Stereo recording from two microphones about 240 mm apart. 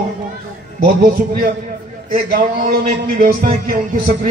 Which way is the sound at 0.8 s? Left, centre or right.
Right.